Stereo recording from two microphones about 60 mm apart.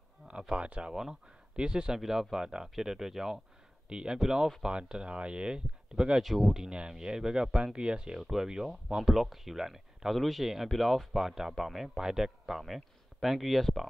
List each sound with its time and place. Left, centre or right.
0.3 s speech: centre
6.2 s speech: centre